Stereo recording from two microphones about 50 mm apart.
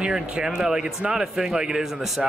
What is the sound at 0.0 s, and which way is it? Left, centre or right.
A man's voice, centre.